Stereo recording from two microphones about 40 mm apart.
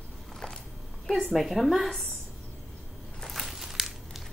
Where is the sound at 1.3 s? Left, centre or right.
Centre.